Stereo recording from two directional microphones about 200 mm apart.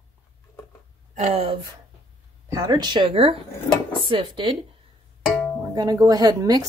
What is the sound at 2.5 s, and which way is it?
Speech, 20° right (ahead or behind).